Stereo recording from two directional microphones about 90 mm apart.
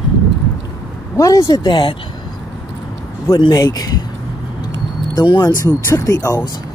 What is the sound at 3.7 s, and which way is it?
Speech, 45° left (ahead or behind).